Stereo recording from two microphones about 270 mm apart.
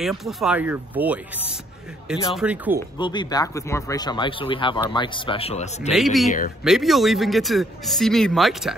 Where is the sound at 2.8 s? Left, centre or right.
Centre.